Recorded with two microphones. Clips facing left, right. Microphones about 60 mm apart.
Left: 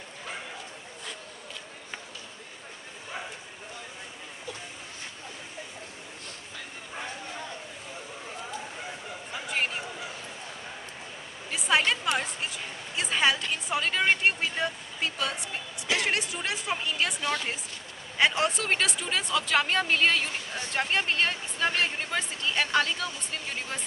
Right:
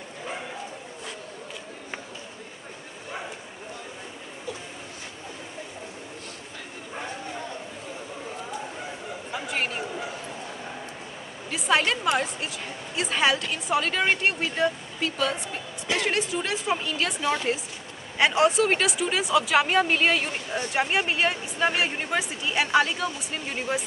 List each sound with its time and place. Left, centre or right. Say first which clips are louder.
9.3 s chatter: right 1 dB; centre
11.5 s a woman's voice: right 2 dB; centre
17.2 s a woman's voice: right 4 dB; centre
18.1 s a woman's voice: right 5 dB; centre